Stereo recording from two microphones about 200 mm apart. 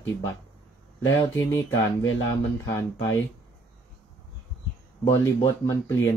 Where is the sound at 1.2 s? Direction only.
15° left (ahead or behind).